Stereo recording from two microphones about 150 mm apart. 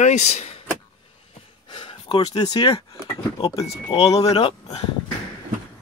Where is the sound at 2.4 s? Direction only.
35° left (ahead or behind).